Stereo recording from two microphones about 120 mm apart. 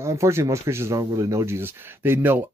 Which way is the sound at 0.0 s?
25° right (ahead or behind).